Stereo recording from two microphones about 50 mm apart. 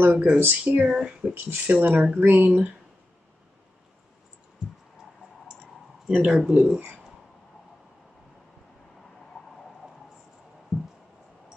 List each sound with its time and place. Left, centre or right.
0.0 s speech: right
0.8 s speech: centre
1.3 s speech: right
6.0 s speech: centre
10.7 s a sound: centre